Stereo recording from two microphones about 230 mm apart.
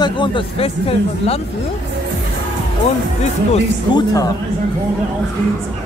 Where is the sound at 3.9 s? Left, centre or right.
Centre.